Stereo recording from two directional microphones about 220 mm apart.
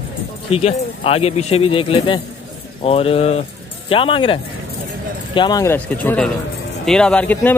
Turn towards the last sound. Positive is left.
turn(degrees=10)  # may be behind; listen again after turning